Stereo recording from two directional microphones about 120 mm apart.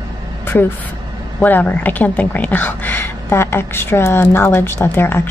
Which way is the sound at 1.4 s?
15° left (ahead or behind).